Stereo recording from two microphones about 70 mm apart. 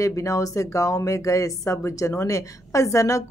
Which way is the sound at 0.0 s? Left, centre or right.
Left.